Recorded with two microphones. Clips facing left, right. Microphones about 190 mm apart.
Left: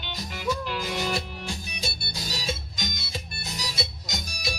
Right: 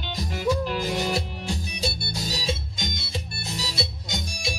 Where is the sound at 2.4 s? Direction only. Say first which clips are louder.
Right 3 dB; 30° right (ahead or behind).